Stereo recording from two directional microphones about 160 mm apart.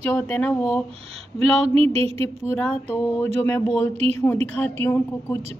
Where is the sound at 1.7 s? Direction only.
40° right (ahead or behind).